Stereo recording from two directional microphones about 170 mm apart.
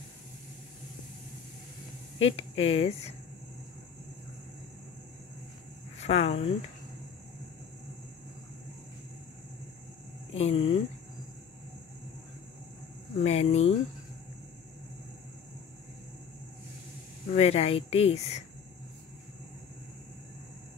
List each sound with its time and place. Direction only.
2.1 s speech: 35° left (ahead or behind)
5.9 s speech: 40° left (ahead or behind)
10.3 s speech: 35° left (ahead or behind)
13.2 s speech: 40° left (ahead or behind)
17.3 s speech: 40° left (ahead or behind)